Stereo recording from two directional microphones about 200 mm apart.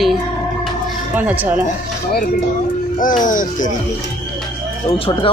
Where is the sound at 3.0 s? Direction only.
40° left (ahead or behind).